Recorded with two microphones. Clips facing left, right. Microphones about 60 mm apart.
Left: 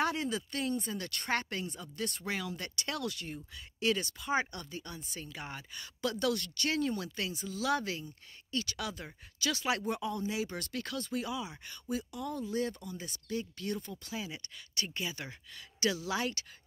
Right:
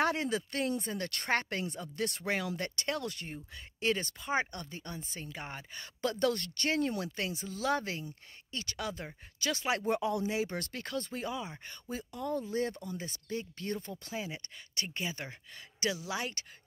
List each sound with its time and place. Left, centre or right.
0.0 s speech: right
1.3 s speech: right
2.9 s speech: right
9.8 s speech: right
10.7 s speech: right